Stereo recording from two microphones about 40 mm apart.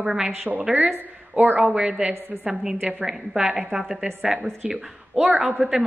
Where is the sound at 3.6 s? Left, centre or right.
Centre.